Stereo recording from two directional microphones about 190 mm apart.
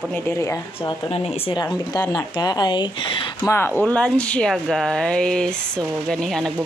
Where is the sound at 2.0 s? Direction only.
20° left (ahead or behind).